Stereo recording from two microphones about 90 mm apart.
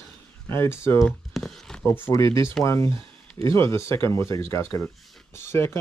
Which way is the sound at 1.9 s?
30° left (ahead or behind).